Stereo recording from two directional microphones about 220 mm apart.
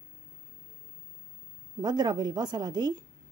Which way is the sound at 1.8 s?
20° right (ahead or behind).